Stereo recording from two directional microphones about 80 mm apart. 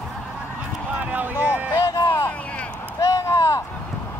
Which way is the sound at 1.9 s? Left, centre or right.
Left.